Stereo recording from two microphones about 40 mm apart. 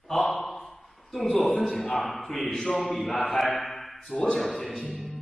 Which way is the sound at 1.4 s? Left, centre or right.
Centre.